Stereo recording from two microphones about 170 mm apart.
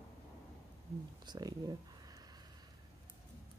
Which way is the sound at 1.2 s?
25° right (ahead or behind).